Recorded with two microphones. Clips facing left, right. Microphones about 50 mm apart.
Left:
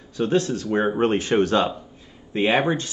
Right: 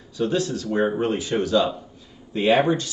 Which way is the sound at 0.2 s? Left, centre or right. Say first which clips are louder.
Left 2 dB; left.